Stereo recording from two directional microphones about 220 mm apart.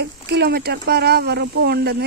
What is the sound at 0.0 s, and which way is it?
Speech, 45° right (ahead or behind).